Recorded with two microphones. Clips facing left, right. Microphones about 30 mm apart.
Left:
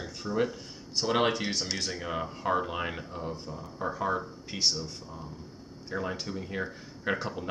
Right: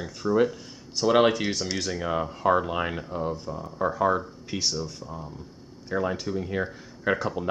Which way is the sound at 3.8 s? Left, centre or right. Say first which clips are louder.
Right 7 dB; right.